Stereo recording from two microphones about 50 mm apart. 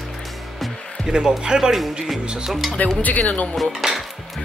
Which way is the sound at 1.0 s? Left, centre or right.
Centre.